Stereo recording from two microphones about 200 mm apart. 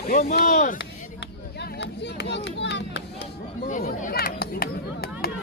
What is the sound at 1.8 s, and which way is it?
Speech, 60° left (ahead or behind).